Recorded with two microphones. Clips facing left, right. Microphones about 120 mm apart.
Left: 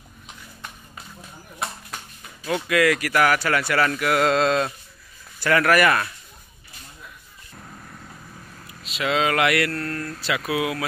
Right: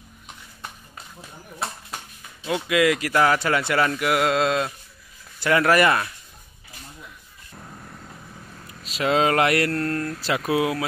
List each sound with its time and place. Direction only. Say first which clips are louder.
2.4 s speech: even; 15° right (ahead or behind)
5.4 s speech: even; 20° right (ahead or behind)
7.5 s vehicle: right 1 dB; 10° right (ahead or behind)
8.8 s mantra: right 2 dB; 35° right (ahead or behind)